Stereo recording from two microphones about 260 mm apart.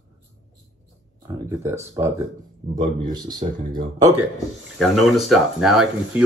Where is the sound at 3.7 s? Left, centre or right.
Right.